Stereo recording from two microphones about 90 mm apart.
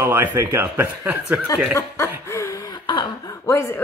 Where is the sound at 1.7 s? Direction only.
30° left (ahead or behind).